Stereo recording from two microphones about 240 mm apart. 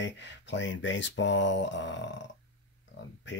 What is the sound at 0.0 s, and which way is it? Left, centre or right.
Speech, left.